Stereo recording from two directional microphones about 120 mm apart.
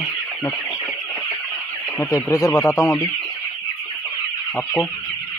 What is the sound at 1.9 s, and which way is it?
Speech, 25° left (ahead or behind).